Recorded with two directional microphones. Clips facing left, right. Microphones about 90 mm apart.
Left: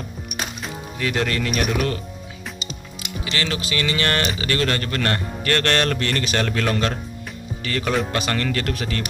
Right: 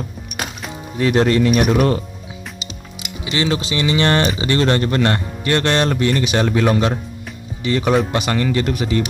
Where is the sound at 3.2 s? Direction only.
20° right (ahead or behind).